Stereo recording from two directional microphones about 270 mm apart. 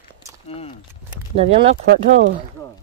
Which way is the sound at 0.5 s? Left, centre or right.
Left.